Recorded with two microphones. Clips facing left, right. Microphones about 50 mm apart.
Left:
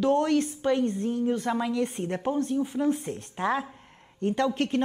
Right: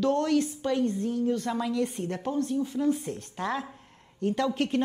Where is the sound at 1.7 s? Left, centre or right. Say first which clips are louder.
Left 1 dB; centre.